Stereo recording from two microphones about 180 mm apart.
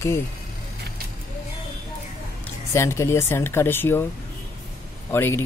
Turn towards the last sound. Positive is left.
turn(degrees=10)  # may be behind; listen again after turning